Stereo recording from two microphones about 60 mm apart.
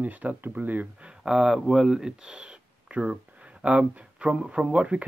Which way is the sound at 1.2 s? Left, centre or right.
Centre.